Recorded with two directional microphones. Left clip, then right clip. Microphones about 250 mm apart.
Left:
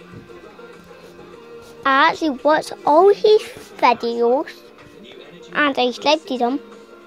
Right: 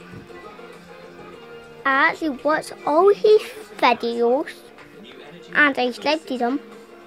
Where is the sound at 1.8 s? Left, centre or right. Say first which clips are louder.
Left 3 dB; centre.